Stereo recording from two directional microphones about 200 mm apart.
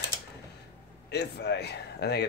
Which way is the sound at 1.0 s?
55° left (ahead or behind).